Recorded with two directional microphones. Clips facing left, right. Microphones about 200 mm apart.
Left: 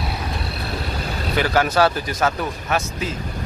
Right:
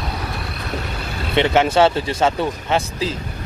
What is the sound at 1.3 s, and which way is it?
Speech, 25° right (ahead or behind).